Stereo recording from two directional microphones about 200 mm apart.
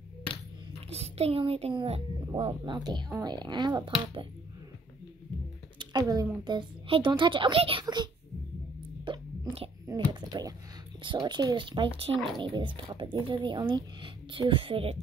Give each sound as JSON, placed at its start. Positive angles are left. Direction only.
{"t": 0.8, "sound": "speech", "side_deg": -30}
{"t": 5.8, "sound": "a sound", "side_deg": -20}
{"t": 6.4, "sound": "speech", "side_deg": -25}
{"t": 9.0, "sound": "whispering", "side_deg": -20}
{"t": 9.8, "sound": "speech", "side_deg": -20}